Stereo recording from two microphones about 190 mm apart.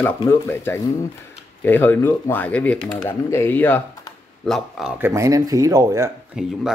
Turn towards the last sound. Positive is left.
turn(degrees=-5)  # may be behind; listen again after turning